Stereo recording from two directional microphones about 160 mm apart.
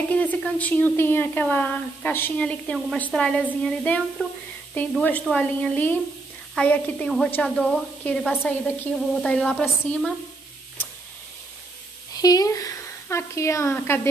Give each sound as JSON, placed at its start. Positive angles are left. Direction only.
{"t": 0.1, "sound": "a woman's voice", "side_deg": 10}
{"t": 12.1, "sound": "a woman's voice", "side_deg": 25}